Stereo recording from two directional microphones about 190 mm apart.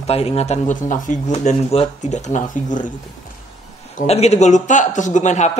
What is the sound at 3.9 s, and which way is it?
Speech, 35° left (ahead or behind).